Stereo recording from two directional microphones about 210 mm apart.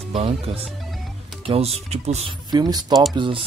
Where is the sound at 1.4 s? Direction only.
25° right (ahead or behind).